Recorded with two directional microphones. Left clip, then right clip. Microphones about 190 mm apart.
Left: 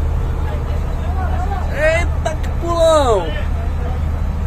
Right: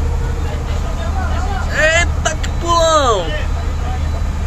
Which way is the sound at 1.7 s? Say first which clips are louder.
Right 3 dB; centre (ahead or behind).